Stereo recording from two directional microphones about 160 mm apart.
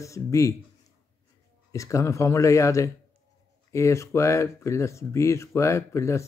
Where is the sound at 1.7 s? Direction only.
20° left (ahead or behind).